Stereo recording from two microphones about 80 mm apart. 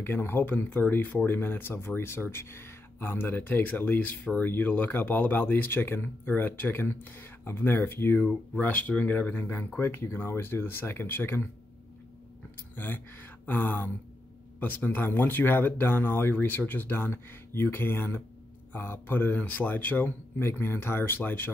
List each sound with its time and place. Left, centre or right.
0.0 s speech: left
12.7 s speech: left